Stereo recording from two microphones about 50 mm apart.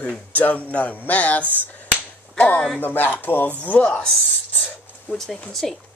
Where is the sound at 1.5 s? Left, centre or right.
Left.